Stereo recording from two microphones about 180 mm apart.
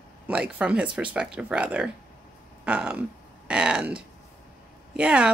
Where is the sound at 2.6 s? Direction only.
10° right (ahead or behind).